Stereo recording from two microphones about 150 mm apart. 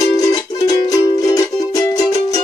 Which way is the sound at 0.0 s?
25° left (ahead or behind).